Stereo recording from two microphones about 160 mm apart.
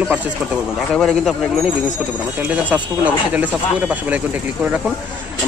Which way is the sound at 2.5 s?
10° right (ahead or behind).